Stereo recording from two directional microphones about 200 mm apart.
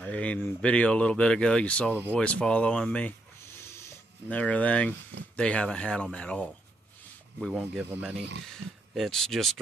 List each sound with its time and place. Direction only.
0.0 s speech: 5° left (ahead or behind)
3.6 s a sound: 15° left (ahead or behind)
5.3 s speech: 5° left (ahead or behind); by 8.2 s 10° right (ahead or behind)
8.6 s speech: 65° right (ahead or behind)
8.9 s speech: centre (ahead or behind)